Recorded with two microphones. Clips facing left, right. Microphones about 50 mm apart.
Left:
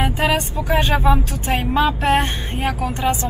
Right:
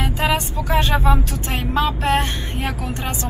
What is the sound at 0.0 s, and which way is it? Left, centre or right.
Vehicle, left.